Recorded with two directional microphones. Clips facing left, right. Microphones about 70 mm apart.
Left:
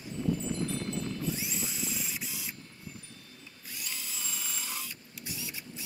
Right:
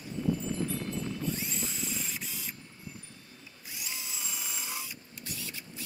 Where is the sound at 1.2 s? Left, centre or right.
Centre.